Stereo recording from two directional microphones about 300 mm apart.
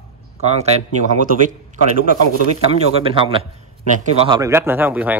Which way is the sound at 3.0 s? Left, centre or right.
Centre.